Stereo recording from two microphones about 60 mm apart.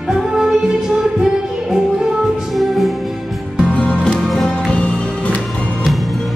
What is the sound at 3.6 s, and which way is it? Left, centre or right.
Music, centre.